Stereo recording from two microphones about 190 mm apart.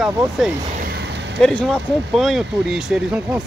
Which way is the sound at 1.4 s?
5° left (ahead or behind).